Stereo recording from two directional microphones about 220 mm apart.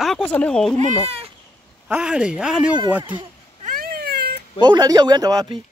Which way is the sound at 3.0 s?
20° right (ahead or behind).